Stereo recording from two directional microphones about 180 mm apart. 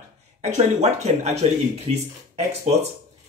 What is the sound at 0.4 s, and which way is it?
A man's voice, 40° right (ahead or behind).